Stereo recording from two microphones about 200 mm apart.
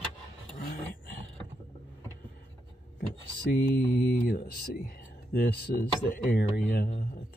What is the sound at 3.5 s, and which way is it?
Speech, 55° left (ahead or behind).